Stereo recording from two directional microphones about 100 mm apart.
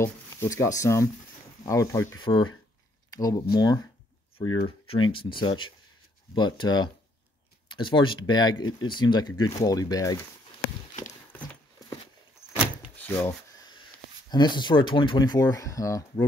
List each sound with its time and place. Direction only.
0.0 s speech: 30° left (ahead or behind)
2.1 s speech: 50° left (ahead or behind)
3.1 s a sound: 35° left (ahead or behind)
3.3 s speech: 50° left (ahead or behind)
4.6 s speech: 65° left (ahead or behind); by 10.1 s 35° left (ahead or behind)
12.9 s a sound: 20° left (ahead or behind)
14.3 s speech: 50° left (ahead or behind); by 16.3 s 35° left (ahead or behind)